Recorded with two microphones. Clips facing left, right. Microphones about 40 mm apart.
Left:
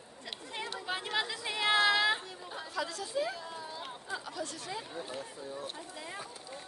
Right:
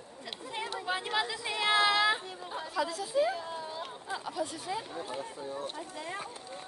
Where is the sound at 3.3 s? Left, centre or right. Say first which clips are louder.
Right 5 dB; centre.